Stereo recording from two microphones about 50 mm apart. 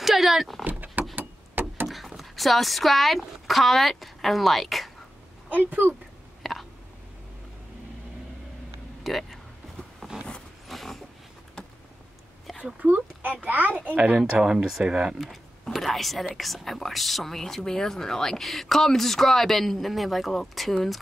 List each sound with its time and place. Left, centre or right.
0.0 s a sound: centre
0.7 s vehicle: right
1.1 s a sound: right
1.9 s speech: centre
5.5 s a child's voice: right
6.4 s whispering: centre
9.0 s speech: centre
9.9 s vehicle: centre
10.7 s roaring cats: centre
12.8 s a child's voice: right
14.4 s speech: centre
15.6 s speech: centre